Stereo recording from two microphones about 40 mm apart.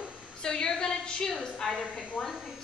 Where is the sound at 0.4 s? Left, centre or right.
Centre.